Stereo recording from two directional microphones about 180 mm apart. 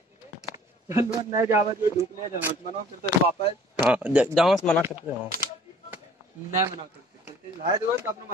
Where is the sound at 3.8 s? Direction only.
5° right (ahead or behind).